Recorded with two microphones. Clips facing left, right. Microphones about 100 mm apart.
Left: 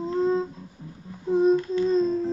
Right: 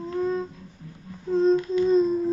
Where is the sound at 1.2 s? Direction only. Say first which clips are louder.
Left 1 dB; 15° left (ahead or behind).